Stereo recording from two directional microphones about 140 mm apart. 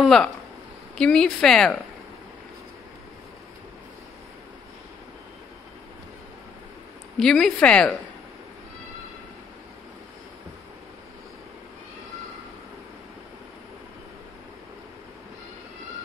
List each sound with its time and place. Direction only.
0.0 s speech: 5° left (ahead or behind)
7.2 s speech: 5° left (ahead or behind)